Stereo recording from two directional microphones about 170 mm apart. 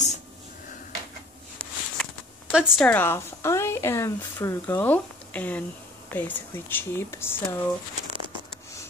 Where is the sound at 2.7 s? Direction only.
5° left (ahead or behind).